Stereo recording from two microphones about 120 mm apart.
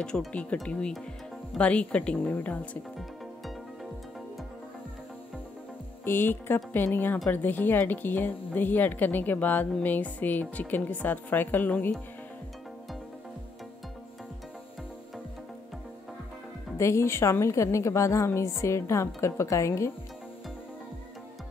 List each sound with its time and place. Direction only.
0.0 s a woman's voice: 5° left (ahead or behind)
6.0 s a woman's voice: 20° left (ahead or behind)
16.7 s a woman's voice: 25° left (ahead or behind)